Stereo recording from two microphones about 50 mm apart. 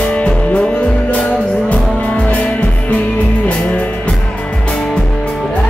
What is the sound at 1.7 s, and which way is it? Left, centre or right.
Music, left.